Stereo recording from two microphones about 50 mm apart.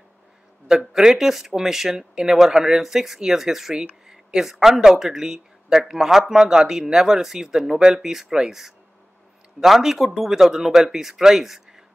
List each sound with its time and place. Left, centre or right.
0.7 s speech: centre